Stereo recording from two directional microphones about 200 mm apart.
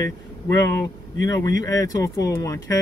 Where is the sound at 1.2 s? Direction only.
15° left (ahead or behind).